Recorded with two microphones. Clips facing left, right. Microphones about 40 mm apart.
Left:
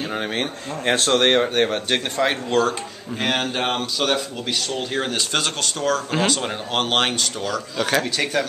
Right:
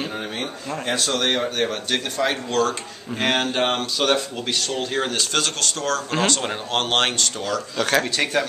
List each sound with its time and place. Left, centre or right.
0.4 s a man's voice: left; by 2.7 s centre
3.2 s speech: centre
5.3 s speech: centre